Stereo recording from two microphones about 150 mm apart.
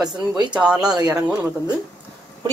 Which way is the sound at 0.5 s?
5° right (ahead or behind).